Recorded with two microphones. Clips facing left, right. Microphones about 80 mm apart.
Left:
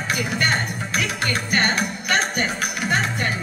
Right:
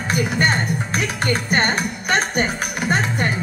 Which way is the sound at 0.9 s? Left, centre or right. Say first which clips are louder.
Right 1 dB; right.